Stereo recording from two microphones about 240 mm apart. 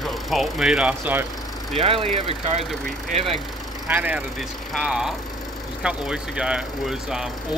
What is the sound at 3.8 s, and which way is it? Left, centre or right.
Speech, centre.